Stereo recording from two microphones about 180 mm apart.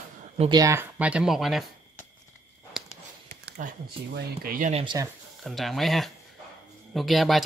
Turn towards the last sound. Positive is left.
turn(degrees=0)  # may be behind; listen again after turning